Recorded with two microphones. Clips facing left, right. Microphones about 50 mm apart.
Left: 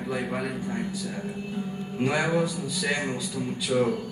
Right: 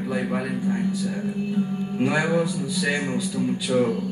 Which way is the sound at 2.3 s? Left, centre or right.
Centre.